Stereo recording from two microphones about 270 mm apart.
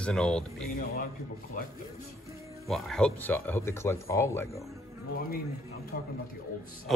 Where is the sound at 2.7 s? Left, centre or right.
Centre.